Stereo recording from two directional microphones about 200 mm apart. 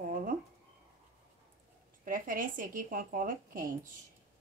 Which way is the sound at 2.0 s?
45° right (ahead or behind).